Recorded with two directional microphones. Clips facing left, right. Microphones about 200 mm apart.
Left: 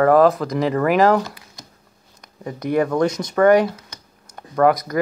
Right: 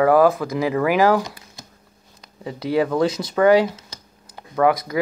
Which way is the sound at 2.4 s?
10° right (ahead or behind).